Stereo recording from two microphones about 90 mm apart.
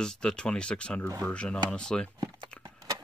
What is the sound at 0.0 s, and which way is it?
Speech, 10° left (ahead or behind).